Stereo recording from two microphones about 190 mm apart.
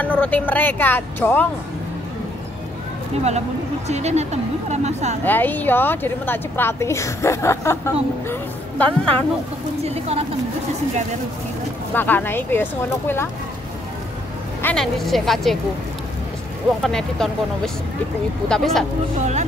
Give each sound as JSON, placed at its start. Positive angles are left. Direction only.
{"t": 0.0, "sound": "a woman's voice", "side_deg": 10}
{"t": 3.3, "sound": "speech", "side_deg": -35}
{"t": 5.2, "sound": "a woman's voice", "side_deg": 10}
{"t": 9.8, "sound": "speech", "side_deg": -35}
{"t": 11.9, "sound": "a woman's voice", "side_deg": 10}
{"t": 14.6, "sound": "a woman's voice", "side_deg": 5}
{"t": 16.8, "sound": "a woman's voice", "side_deg": 0}
{"t": 18.5, "sound": "a woman's voice", "side_deg": 0}
{"t": 19.1, "sound": "speech", "side_deg": -40}